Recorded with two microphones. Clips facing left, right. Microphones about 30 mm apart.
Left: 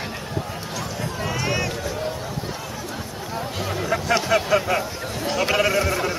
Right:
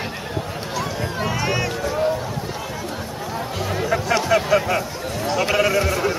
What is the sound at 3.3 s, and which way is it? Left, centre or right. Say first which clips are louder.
Music: right 1 dB; centre.